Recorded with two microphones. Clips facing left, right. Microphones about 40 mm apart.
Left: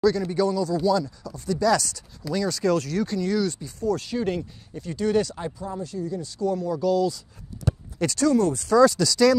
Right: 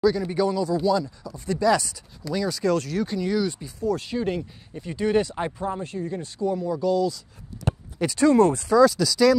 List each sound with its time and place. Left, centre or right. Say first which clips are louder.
0.0 s speech: even; centre
4.7 s speech: right 1 dB; centre
5.4 s speech: right 4 dB; right
6.4 s speech: even; centre
7.5 s a sound: even; centre
8.2 s speech: right 4 dB; right
8.6 s speech: even; centre